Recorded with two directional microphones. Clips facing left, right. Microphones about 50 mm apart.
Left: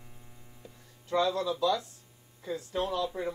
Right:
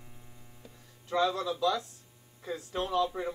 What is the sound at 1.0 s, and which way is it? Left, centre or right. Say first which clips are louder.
Speech: left 1 dB; centre.